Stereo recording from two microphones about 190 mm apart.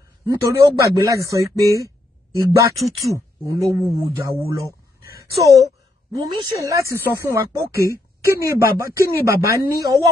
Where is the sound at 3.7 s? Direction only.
15° right (ahead or behind).